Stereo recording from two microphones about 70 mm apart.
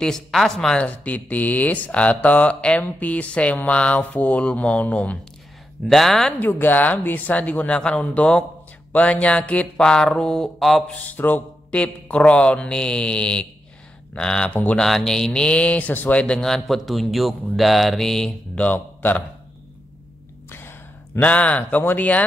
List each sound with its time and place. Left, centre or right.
0.0 s a man's voice: centre
0.8 s speech: left
5.9 s a man's voice: centre
6.4 s speech: left; by 10.8 s centre
10.9 s a sound: left
11.8 s speech: centre
16.3 s a man's voice: centre
18.6 s a man's voice: left
20.4 s a sound: left
21.2 s speech: centre